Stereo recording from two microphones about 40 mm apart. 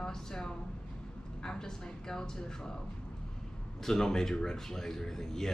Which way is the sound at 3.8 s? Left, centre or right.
Centre.